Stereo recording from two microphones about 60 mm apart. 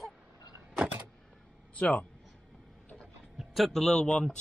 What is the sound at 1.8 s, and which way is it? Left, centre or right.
Speech, centre.